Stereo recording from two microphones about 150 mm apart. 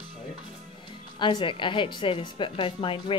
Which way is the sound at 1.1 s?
30° left (ahead or behind).